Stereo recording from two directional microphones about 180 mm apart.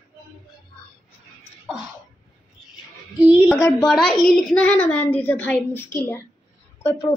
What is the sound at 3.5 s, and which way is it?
A woman's voice, 10° left (ahead or behind).